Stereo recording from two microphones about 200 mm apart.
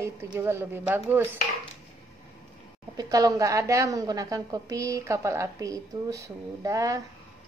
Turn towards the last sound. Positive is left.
turn(degrees=-15)  # may be behind; listen again after turning